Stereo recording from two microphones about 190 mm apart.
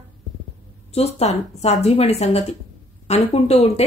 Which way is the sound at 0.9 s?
35° left (ahead or behind).